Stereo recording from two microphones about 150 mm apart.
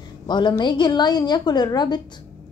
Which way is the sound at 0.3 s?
30° left (ahead or behind).